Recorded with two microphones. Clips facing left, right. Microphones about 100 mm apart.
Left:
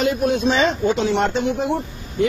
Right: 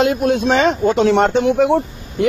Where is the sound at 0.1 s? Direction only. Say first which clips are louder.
Right 3 dB; 65° right (ahead or behind).